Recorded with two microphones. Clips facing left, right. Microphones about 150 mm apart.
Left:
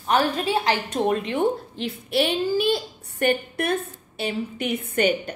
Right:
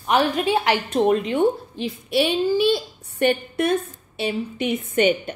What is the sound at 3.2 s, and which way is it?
A woman's voice, 45° left (ahead or behind).